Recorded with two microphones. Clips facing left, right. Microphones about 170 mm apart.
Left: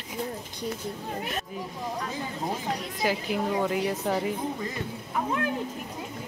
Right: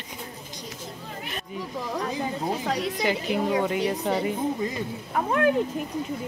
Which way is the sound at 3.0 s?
Centre (ahead or behind).